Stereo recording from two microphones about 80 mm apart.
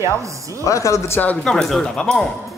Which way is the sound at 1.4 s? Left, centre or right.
Centre.